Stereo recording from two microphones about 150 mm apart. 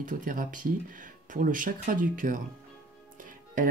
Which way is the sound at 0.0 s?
60° right (ahead or behind).